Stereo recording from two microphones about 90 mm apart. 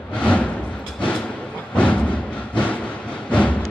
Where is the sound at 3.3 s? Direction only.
15° left (ahead or behind).